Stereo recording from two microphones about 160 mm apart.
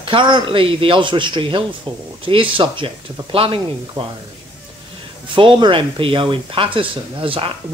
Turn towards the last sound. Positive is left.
turn(degrees=-35)  # may be behind; listen again after turning